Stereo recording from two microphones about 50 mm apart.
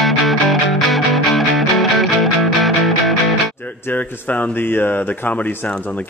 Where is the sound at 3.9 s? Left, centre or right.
Left.